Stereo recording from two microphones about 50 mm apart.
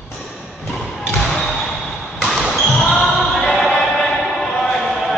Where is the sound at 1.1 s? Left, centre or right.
Centre.